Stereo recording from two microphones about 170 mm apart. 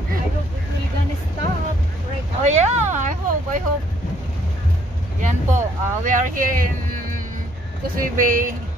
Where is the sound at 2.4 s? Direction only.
45° right (ahead or behind).